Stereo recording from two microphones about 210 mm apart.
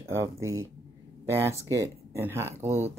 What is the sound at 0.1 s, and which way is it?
Speech, 15° right (ahead or behind).